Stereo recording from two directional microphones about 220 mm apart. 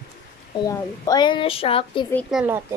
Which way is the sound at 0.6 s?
20° left (ahead or behind).